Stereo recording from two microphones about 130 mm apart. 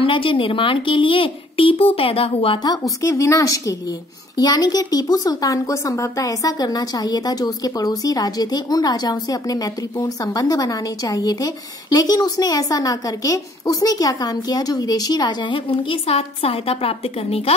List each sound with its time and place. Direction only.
0.0 s speech: 40° left (ahead or behind)
2.6 s a woman's voice: 30° left (ahead or behind); by 17.6 s 50° left (ahead or behind)